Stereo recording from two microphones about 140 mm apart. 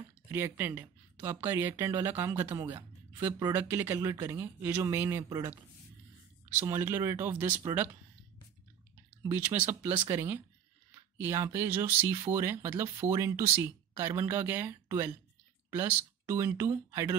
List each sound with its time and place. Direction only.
0.3 s speech: 15° right (ahead or behind)
3.3 s speech: 30° right (ahead or behind)
3.6 s speech: 15° right (ahead or behind)
9.3 s speech: 15° right (ahead or behind)